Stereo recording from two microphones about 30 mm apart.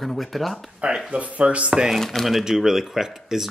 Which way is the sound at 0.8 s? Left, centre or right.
Right.